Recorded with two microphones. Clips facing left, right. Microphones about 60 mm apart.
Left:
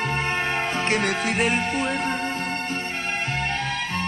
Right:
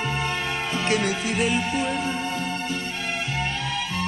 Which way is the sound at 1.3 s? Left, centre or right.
Left.